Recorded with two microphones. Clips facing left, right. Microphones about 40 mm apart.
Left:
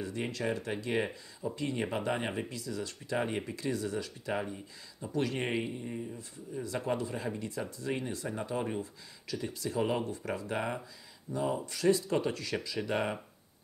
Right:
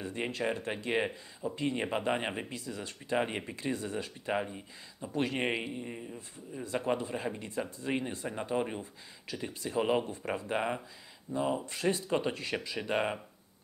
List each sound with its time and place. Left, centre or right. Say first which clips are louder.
0.0 s speech: right 1 dB; right
5.4 s speech: right 1 dB; right